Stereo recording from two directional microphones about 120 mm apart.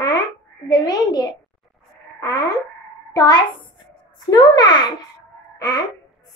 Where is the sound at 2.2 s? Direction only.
30° left (ahead or behind).